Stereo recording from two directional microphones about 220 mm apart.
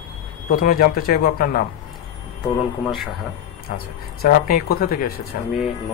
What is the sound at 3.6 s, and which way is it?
Speech, 45° left (ahead or behind).